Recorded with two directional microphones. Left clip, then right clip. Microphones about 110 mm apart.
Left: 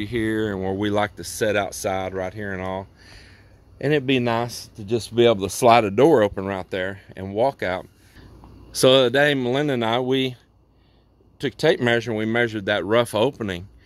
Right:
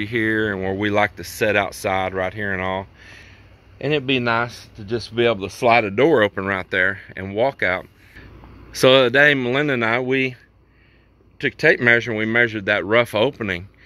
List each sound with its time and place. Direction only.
0.0 s speech: 30° left (ahead or behind)
3.3 s a man's voice: 80° left
5.6 s speech: 65° left (ahead or behind)
6.3 s speech: 25° left (ahead or behind)